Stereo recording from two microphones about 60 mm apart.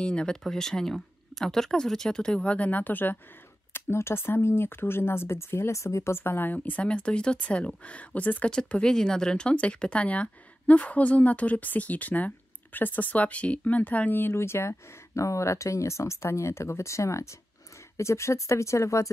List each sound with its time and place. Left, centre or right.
0.0 s speech: centre
0.4 s speech: centre; by 3.2 s left
3.7 s speech: left
6.2 s speech: left